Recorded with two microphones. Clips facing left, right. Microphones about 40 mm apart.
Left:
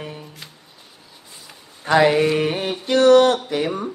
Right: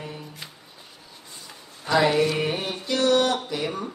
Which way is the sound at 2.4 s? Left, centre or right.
Left.